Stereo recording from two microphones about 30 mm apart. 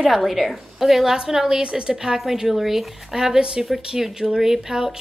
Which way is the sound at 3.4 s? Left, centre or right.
Right.